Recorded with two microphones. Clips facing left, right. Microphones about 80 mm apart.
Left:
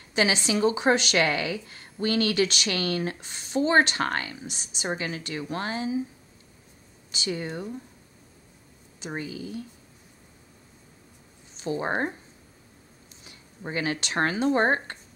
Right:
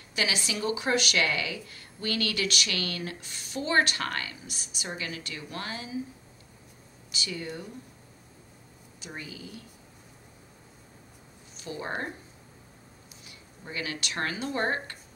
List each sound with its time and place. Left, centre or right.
0.1 s speech: left
7.1 s speech: left
9.0 s speech: left
11.5 s speech: left
13.3 s speech: left